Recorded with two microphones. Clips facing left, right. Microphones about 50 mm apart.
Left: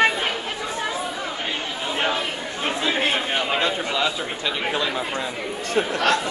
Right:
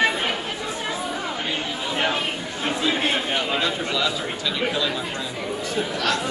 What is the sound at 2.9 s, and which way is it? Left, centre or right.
Chatter, centre.